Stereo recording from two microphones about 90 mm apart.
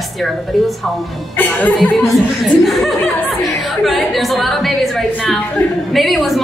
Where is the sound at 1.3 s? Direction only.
20° left (ahead or behind).